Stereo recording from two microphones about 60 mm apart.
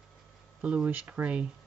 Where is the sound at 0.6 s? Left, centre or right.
Centre.